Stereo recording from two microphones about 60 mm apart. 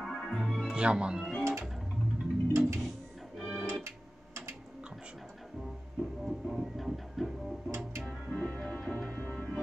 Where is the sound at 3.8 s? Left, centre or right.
Right.